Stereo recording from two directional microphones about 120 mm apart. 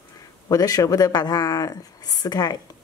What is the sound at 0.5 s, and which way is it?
Speech, 30° left (ahead or behind).